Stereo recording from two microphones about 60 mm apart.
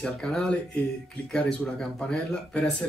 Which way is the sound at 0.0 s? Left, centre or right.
Centre.